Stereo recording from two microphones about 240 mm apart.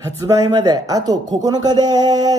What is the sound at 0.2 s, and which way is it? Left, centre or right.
Speech, centre.